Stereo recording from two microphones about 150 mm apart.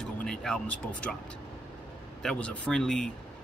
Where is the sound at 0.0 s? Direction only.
5° left (ahead or behind).